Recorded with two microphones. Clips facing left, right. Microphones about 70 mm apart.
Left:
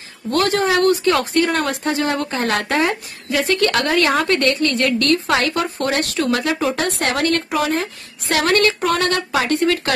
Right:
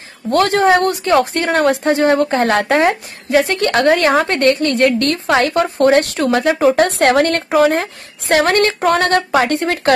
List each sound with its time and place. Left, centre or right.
0.3 s speech: right